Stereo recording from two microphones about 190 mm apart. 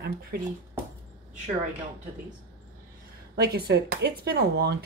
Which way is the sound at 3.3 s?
55° right (ahead or behind).